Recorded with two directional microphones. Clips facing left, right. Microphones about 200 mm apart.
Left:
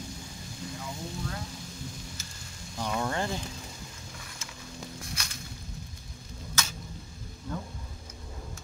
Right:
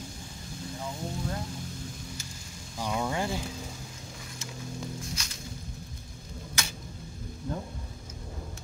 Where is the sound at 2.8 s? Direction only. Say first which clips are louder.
Even; 10° right (ahead or behind).